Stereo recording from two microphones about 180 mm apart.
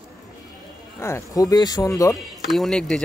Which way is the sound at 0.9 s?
15° left (ahead or behind).